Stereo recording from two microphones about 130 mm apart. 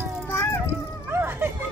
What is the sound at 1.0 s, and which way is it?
Dog, 15° right (ahead or behind).